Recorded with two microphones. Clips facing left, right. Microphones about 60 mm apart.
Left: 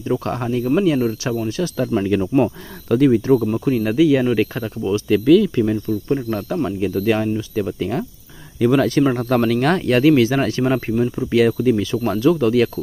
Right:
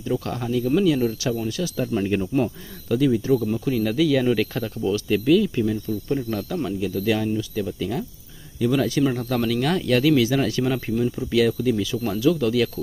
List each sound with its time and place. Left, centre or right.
0.0 s speech: left
2.0 s speech: left
3.5 s speech: left
5.0 s speech: left
6.0 s speech: left
8.5 s speech: left